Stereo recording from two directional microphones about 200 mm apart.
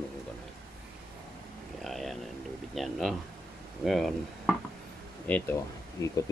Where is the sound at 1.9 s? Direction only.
Centre (ahead or behind); by 6.1 s 15° left (ahead or behind).